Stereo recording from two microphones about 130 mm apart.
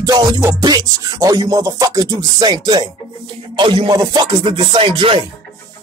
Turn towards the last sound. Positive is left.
turn(degrees=-40)  # may be behind; listen again after turning